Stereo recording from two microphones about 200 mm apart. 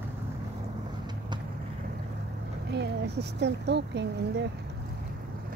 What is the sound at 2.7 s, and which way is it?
Speech, 55° right (ahead or behind).